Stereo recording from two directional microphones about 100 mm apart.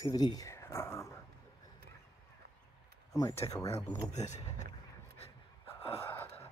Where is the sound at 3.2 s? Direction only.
30° left (ahead or behind).